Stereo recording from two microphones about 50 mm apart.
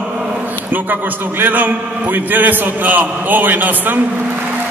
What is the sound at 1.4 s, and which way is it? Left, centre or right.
A man's voice, right.